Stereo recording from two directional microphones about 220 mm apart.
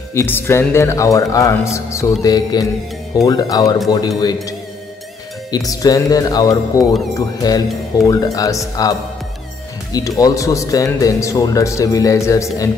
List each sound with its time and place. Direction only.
0.1 s speech: 10° left (ahead or behind)
9.9 s speech: 15° left (ahead or behind)